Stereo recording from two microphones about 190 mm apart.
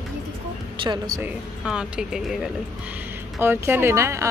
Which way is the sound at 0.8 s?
25° right (ahead or behind).